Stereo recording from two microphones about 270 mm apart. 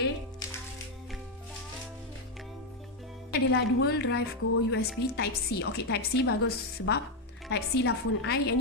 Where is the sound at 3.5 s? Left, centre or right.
Left.